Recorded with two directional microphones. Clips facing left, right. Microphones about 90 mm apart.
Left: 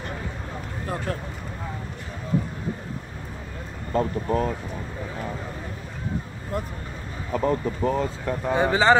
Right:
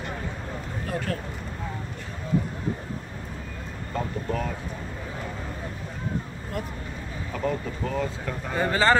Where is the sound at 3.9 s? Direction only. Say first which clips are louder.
Left 6 dB; 25° left (ahead or behind).